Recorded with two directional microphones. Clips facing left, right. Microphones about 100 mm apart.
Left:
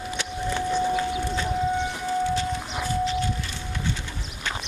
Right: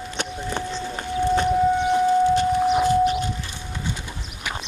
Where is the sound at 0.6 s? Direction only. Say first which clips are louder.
Left 6 dB; 10° left (ahead or behind).